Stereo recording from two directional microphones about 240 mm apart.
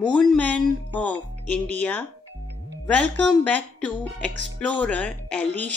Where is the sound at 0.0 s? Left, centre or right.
Centre.